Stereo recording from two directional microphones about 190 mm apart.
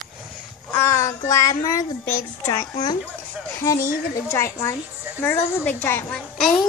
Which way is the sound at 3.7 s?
50° left (ahead or behind).